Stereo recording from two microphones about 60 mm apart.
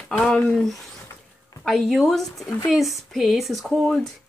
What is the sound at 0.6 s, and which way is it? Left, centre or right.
A woman's voice, centre.